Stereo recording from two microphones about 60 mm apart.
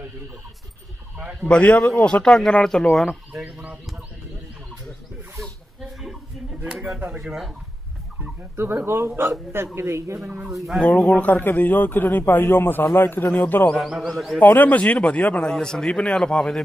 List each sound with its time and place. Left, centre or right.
1.5 s speech: left; by 3.1 s centre
5.8 s a sound: centre
6.7 s speech: centre
8.8 s speech: right
9.8 s speech: right
10.9 s a man's voice: left
13.3 s a man's voice: left
13.7 s speech: centre
14.4 s a man's voice: left
15.5 s speech: centre